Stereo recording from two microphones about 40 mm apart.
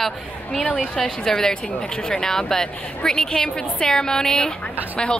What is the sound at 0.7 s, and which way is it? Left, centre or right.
A woman's voice, centre.